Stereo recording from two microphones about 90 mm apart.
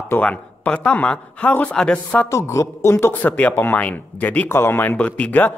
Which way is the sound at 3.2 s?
15° left (ahead or behind).